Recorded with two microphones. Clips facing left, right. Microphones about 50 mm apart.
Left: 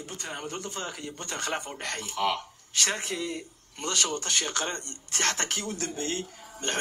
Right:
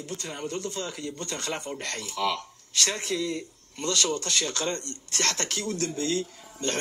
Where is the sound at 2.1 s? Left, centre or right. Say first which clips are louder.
Even; left.